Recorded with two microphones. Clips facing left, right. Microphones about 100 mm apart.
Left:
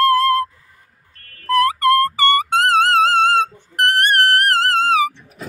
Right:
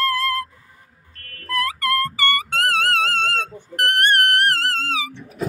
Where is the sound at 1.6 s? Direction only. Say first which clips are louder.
Left 7 dB; 40° left (ahead or behind).